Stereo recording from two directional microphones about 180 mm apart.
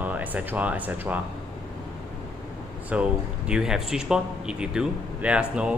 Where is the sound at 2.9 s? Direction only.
5° right (ahead or behind).